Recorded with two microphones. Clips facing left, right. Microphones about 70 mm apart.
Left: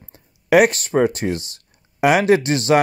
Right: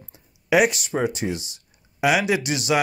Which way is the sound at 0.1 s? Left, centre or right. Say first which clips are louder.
Left 5 dB; left.